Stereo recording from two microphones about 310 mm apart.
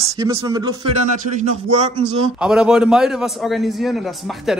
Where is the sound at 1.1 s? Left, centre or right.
Right.